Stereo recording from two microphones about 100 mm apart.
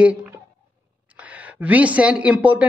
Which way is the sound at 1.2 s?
15° right (ahead or behind).